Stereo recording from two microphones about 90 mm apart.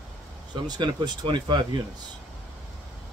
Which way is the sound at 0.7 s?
55° right (ahead or behind).